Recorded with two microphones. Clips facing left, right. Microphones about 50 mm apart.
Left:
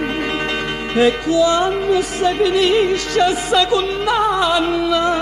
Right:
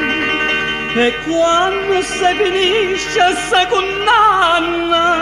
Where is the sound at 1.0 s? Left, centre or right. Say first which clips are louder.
Even; right.